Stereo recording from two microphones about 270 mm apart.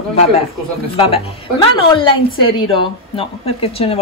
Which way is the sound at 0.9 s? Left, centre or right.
Left.